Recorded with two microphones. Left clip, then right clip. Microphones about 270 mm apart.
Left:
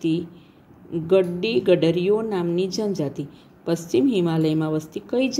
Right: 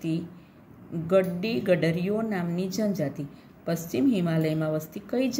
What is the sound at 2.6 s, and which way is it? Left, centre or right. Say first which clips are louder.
Speech: left 4 dB; centre.